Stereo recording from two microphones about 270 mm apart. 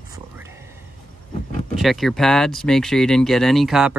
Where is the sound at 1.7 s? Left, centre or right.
Centre.